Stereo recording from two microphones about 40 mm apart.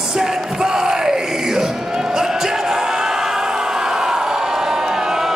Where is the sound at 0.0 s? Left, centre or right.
Centre.